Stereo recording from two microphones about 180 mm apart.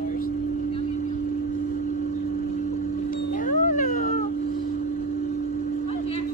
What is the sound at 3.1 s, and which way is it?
Cat, 45° left (ahead or behind).